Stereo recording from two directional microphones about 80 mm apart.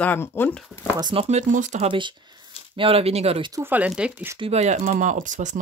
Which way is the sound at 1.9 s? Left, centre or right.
Right.